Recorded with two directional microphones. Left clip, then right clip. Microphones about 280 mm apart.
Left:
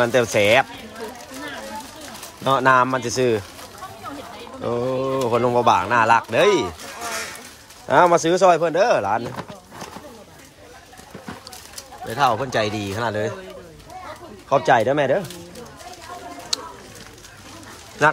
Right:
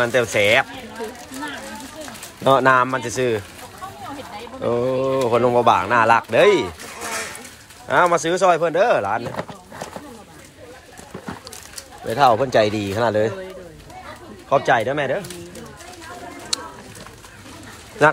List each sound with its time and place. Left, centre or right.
0.0 s speech: centre
2.4 s speech: centre
4.6 s speech: centre
7.9 s speech: centre
12.1 s speech: centre
14.5 s speech: centre
16.5 s a sound: centre